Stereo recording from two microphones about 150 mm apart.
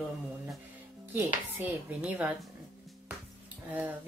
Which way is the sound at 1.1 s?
10° right (ahead or behind).